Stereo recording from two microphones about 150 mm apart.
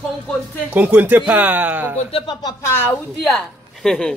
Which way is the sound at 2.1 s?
30° left (ahead or behind).